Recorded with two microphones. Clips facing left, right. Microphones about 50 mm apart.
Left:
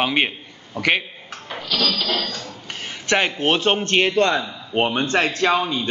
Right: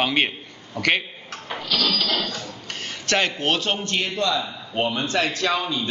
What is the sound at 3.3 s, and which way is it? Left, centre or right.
A man's voice, left.